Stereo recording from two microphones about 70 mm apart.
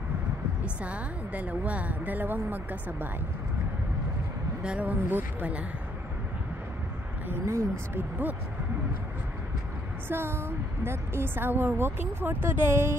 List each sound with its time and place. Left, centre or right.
0.8 s speech: centre
4.6 s speech: centre
7.2 s speech: right
10.0 s a woman's voice: right